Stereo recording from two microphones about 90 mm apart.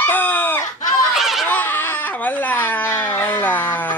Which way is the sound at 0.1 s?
20° left (ahead or behind).